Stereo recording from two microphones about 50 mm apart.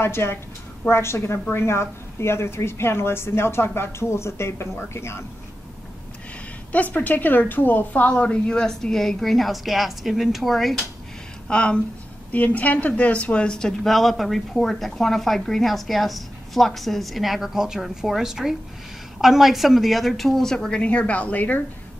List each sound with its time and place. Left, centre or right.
0.0 s a woman's voice: left
6.7 s a woman's voice: left
8.1 s a woman's voice: left
8.5 s speech: centre
11.4 s a woman's voice: left
12.3 s a woman's voice: left; by 13.7 s centre
13.8 s speech: centre
20.8 s a woman's voice: left